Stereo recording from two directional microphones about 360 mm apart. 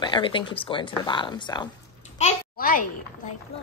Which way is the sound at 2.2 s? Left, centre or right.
Left.